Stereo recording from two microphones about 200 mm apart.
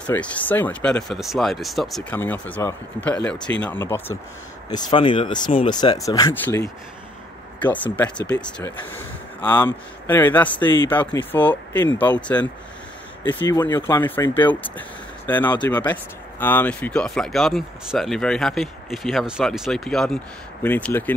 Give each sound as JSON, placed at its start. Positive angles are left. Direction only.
{"t": 0.0, "sound": "speech", "side_deg": 5}
{"t": 13.5, "sound": "speech", "side_deg": 20}